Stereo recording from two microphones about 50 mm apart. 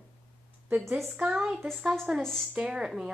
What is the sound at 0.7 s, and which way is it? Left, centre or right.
Speech, right.